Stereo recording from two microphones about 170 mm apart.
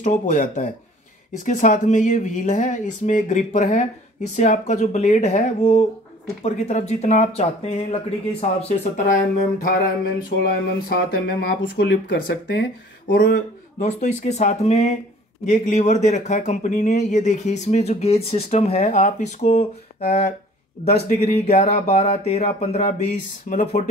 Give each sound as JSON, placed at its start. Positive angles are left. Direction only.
{"t": 0.0, "sound": "speech", "side_deg": 50}
{"t": 10.4, "sound": "speech", "side_deg": 60}
{"t": 13.7, "sound": "speech", "side_deg": 45}